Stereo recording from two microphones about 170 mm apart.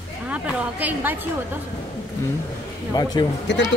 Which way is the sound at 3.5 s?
90° left.